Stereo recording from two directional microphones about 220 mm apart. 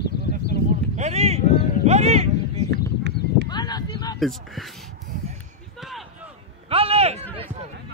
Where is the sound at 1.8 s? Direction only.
30° right (ahead or behind).